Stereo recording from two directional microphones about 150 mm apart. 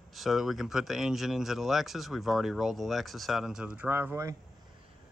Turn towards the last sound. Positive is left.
turn(degrees=-15)  # may be behind; listen again after turning